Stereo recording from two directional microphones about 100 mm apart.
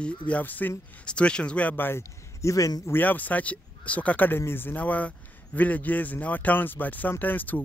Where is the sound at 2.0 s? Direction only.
35° left (ahead or behind).